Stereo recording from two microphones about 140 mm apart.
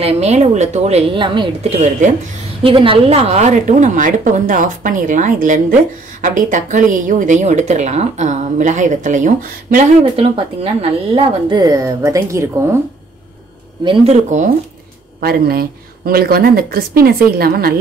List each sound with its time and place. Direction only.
0.0 s a woman's voice: 50° right (ahead or behind); by 1.7 s 35° right (ahead or behind)
1.7 s a woman's voice: 60° right (ahead or behind)
2.6 s a woman's voice: 40° right (ahead or behind); by 9.8 s 70° right (ahead or behind)
10.1 s a woman's voice: 45° right (ahead or behind)
11.5 s speech: 25° right (ahead or behind)
14.0 s a woman's voice: 60° right (ahead or behind)
15.1 s speech: 90° right